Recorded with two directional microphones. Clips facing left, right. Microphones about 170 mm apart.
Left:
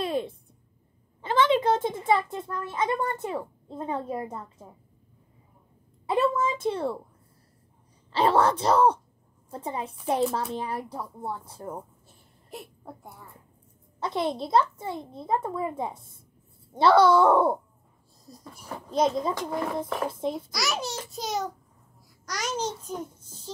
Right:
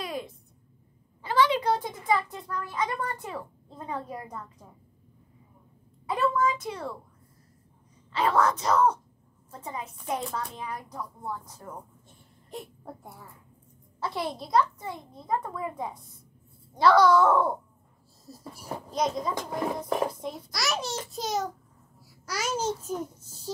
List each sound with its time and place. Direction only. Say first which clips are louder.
0.0 s a sound: left 6 dB; 30° left (ahead or behind)
1.2 s a child's voice: left 2 dB; 25° left (ahead or behind)
6.0 s a sound: left 2 dB; 25° left (ahead or behind)
8.1 s speech: left 3 dB; 30° left (ahead or behind)
12.4 s speech: right 1 dB; centre (ahead or behind)
13.9 s a child's voice: left 4 dB; 20° left (ahead or behind)
18.2 s a sound: right 2 dB; 5° right (ahead or behind)
20.1 s a child's voice: left 6 dB; 30° left (ahead or behind)
20.5 s a child's voice: even; centre (ahead or behind)